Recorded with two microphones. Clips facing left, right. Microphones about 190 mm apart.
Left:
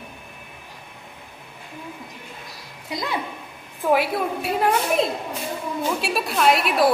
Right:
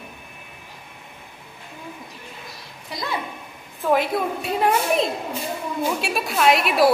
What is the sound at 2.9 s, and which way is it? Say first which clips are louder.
Speech: left 2 dB; 20° left (ahead or behind).